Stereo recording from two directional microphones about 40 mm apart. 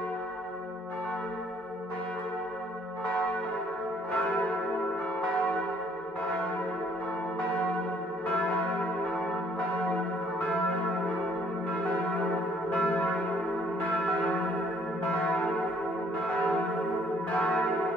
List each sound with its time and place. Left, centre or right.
9.1 s church bell: left
12.7 s church bell: left
17.4 s church bell: left